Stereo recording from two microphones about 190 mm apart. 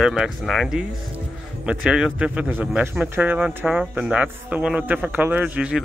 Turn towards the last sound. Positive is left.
turn(degrees=-5)  # may be behind; listen again after turning